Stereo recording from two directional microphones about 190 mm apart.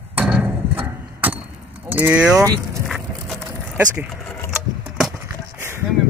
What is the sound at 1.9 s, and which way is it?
Speech, 10° right (ahead or behind).